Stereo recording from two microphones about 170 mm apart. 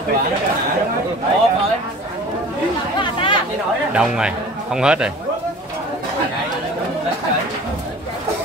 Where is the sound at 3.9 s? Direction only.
5° right (ahead or behind).